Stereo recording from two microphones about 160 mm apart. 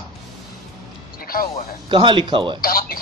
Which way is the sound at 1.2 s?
65° left (ahead or behind).